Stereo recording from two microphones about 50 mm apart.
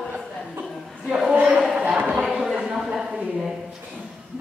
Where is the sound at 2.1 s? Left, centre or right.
Centre.